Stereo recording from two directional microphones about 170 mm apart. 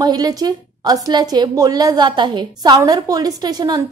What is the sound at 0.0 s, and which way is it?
A woman's voice, 20° right (ahead or behind).